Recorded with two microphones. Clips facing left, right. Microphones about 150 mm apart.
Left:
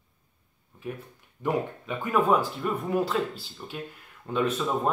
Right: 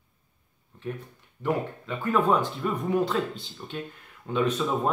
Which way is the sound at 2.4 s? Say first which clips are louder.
Right 1 dB; 5° left (ahead or behind).